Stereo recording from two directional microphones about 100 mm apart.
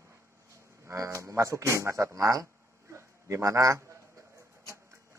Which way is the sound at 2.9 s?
30° right (ahead or behind).